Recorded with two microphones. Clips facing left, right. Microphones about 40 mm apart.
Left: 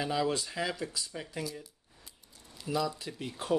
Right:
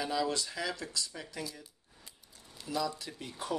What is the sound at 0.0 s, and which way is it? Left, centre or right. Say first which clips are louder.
Speech: left 2 dB; left.